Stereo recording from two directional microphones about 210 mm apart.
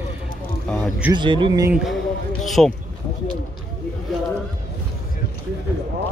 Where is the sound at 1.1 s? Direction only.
20° right (ahead or behind).